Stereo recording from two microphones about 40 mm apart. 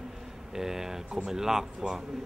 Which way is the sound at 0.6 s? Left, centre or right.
Centre.